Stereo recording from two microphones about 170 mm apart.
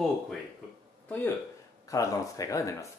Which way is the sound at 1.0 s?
10° left (ahead or behind).